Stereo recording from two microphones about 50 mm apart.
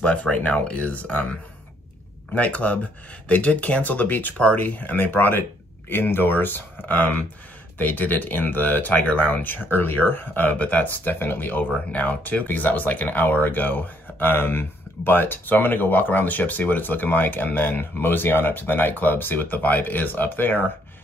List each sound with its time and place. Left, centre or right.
0.0 s speech: left
2.3 s speech: left
11.1 s speech: left
11.7 s speech: left